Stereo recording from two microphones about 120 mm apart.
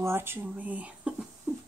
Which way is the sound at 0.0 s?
20° right (ahead or behind).